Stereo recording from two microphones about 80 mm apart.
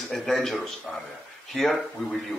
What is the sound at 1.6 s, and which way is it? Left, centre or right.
Speech, centre.